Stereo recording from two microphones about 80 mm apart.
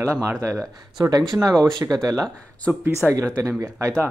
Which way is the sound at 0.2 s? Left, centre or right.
Right.